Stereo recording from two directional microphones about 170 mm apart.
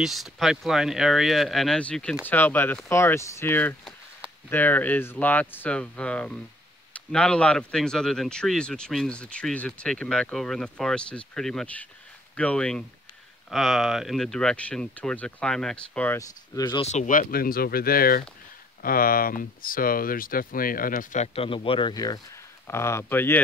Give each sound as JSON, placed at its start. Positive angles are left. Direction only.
{"t": 0.0, "sound": "speech", "side_deg": 0}
{"t": 16.2, "sound": "speech", "side_deg": 20}
{"t": 16.8, "sound": "speech", "side_deg": 45}
{"t": 21.4, "sound": "speech", "side_deg": 35}